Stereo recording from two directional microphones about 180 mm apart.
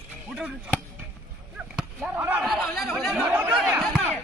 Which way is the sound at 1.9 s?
10° right (ahead or behind).